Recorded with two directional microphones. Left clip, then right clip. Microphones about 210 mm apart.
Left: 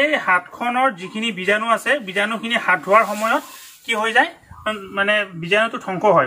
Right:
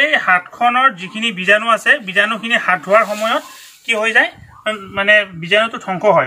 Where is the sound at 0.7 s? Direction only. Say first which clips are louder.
Right 6 dB; 5° left (ahead or behind).